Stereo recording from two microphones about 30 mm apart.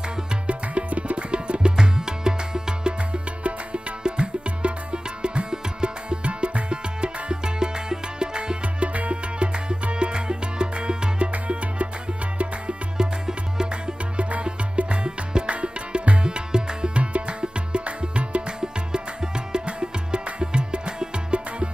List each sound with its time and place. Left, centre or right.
0.5 s music: right
1.8 s music: right
3.1 s music: right
8.7 s music: right
9.1 s music: right
11.3 s music: right
12.9 s music: right
15.5 s music: right
16.9 s music: right
18.6 s music: right